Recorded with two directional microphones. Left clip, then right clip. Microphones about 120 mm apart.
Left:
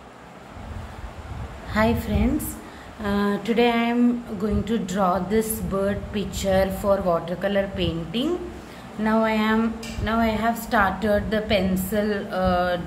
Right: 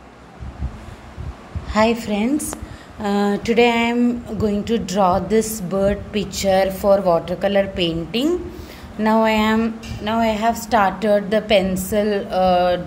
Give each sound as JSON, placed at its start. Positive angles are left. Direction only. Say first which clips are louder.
{"t": 1.7, "sound": "a woman's voice", "louder": "right 5 dB", "side_deg": -25}
{"t": 9.6, "sound": "a woman's voice", "louder": "right 3 dB", "side_deg": -20}